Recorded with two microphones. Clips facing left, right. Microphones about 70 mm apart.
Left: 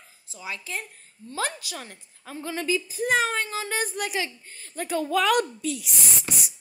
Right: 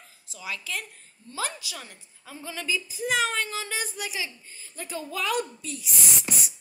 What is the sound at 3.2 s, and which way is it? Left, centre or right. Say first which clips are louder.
A woman's voice: left 1 dB; left.